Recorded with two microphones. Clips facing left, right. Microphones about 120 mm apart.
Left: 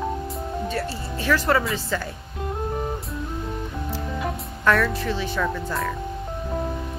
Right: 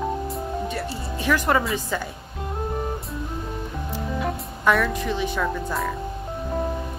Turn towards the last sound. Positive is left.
turn(degrees=-5)  # may be behind; listen again after turning